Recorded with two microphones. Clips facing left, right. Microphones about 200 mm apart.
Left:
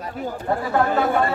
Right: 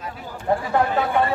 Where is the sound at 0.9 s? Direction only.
45° left (ahead or behind).